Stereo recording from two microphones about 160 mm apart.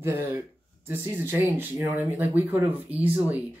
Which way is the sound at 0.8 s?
10° right (ahead or behind).